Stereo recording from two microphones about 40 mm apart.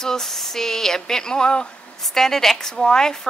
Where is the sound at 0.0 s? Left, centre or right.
Centre.